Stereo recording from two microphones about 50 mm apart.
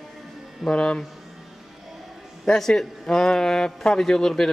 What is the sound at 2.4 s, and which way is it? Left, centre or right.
A man's voice, centre.